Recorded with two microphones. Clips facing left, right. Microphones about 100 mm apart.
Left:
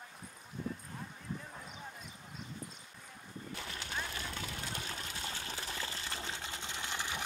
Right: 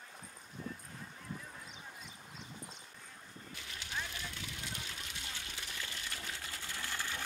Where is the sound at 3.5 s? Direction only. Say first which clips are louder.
Left 2 dB; 50° left (ahead or behind).